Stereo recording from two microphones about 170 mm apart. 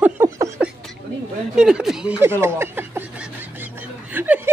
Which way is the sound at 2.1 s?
15° right (ahead or behind).